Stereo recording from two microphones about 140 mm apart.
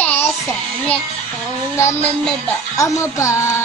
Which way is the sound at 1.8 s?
20° left (ahead or behind).